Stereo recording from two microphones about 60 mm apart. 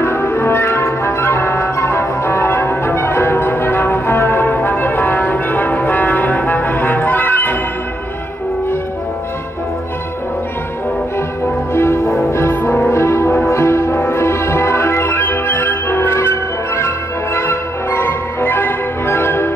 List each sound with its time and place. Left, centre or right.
0.0 s music: left
4.6 s brass instrument: left
11.7 s music: left